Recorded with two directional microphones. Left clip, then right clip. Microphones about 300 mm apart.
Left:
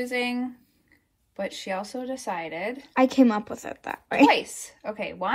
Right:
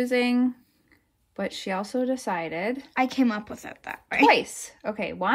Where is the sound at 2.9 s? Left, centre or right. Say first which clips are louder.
Left 6 dB; centre.